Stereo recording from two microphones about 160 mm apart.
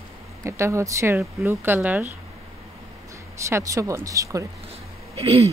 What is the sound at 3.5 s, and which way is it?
Speech, 20° right (ahead or behind).